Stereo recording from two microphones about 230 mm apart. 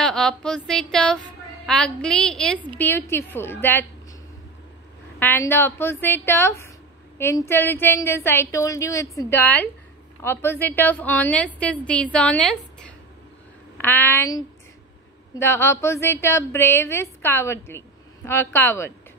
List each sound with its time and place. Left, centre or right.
0.0 s a woman's voice: centre
5.2 s speech: centre
13.7 s speech: centre